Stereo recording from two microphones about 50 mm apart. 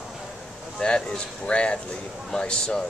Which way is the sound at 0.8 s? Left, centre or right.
Centre.